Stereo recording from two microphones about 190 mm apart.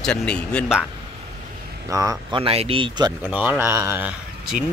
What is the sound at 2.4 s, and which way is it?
Speech, 30° right (ahead or behind).